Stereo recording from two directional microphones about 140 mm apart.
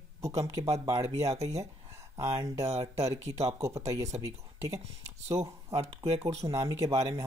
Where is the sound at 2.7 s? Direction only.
50° right (ahead or behind).